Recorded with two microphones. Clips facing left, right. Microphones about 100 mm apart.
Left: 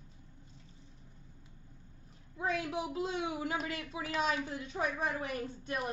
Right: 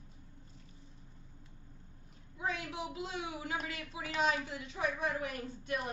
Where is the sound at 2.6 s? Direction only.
30° left (ahead or behind).